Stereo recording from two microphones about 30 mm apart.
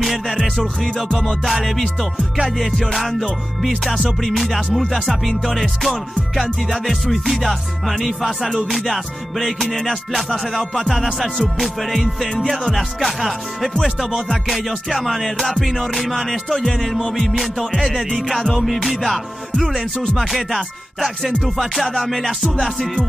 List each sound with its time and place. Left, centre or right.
0.0 s music: centre